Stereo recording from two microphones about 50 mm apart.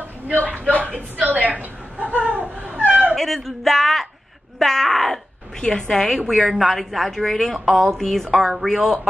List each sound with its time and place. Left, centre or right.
0.3 s a man's voice: right
1.2 s a sound: right
2.9 s dog: right
3.2 s a woman's voice: centre